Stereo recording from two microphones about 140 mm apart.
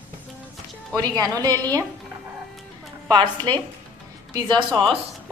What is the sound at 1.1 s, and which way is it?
Speech, 25° right (ahead or behind).